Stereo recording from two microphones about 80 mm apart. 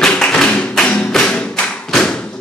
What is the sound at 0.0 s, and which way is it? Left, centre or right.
Music, centre.